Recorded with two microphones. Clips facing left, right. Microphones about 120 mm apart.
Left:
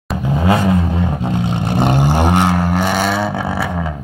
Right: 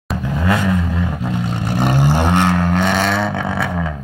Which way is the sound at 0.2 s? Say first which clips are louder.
Left 4 dB; 25° left (ahead or behind).